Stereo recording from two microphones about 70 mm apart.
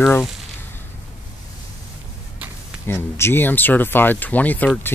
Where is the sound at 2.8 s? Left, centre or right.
Left.